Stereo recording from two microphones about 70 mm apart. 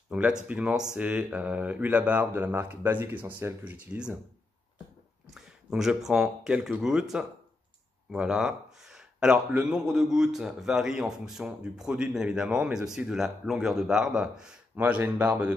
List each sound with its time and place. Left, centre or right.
0.1 s a man's voice: centre; by 3.4 s right
3.6 s speech: centre
5.3 s a man's voice: centre
8.1 s a sound: centre
9.6 s a man's voice: centre
14.8 s speech: right